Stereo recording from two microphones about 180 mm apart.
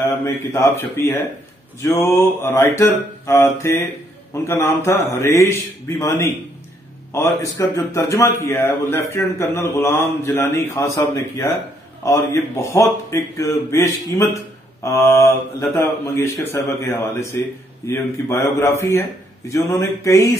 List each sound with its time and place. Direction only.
0.0 s speech: 15° left (ahead or behind)